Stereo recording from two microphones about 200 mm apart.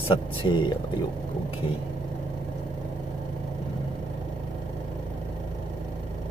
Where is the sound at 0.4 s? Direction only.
25° left (ahead or behind).